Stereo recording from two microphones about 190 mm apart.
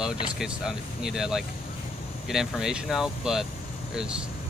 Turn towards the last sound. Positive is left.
turn(degrees=-5)  # may be behind; listen again after turning